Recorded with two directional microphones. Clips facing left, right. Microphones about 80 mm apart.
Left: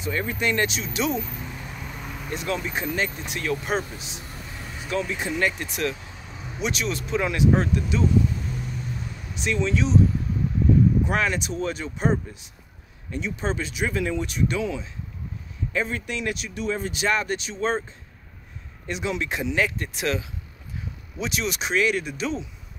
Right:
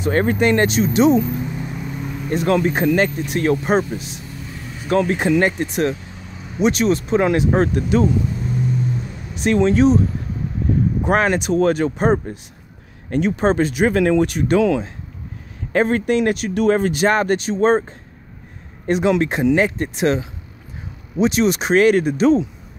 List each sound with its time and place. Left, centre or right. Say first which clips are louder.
0.0 s speech: right 9 dB; right
1.2 s a sound: right 12 dB; centre
2.3 s speech: right 11 dB; right
3.0 s speech: right 9 dB; right
5.4 s speech: right 7 dB; right
9.3 s speech: right 9 dB; right
11.1 s speech: right 8 dB; right